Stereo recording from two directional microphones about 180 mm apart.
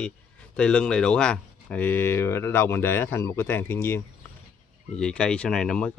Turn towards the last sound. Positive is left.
turn(degrees=5)  # may be behind; listen again after turning